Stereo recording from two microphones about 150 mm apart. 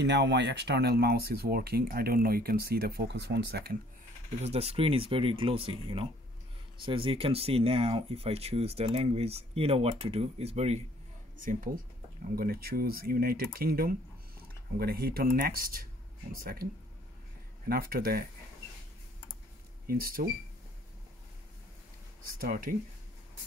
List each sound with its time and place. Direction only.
0.7 s speech: 90° right
4.4 s speech: 45° right (ahead or behind)
11.4 s speech: 65° right (ahead or behind)
12.4 s speech: 85° right
17.6 s speech: 75° right (ahead or behind)
19.9 s speech: 75° right (ahead or behind)
22.4 s speech: 65° right (ahead or behind)